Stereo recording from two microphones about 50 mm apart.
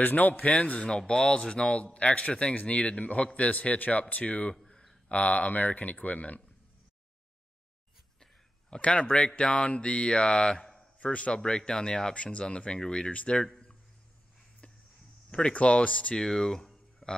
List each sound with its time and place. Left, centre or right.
0.0 s speech: left
4.6 s a sound: centre
5.1 s speech: left
8.2 s speech: centre
11.4 s speech: centre
15.3 s speech: left
16.2 s a sound: centre